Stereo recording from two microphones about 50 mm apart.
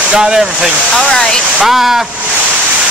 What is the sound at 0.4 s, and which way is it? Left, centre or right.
Speech, centre.